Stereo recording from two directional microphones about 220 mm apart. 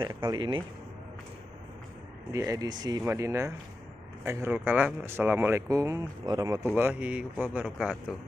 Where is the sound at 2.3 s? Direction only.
15° right (ahead or behind).